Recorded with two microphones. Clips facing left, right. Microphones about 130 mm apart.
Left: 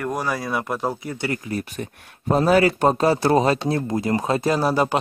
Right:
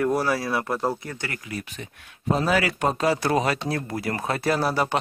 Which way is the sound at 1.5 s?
45° left (ahead or behind).